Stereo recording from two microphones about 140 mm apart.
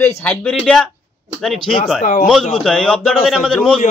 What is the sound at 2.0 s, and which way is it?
Speech, 80° left.